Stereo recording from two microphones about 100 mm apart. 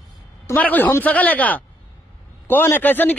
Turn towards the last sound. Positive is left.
turn(degrees=15)  # may be behind; listen again after turning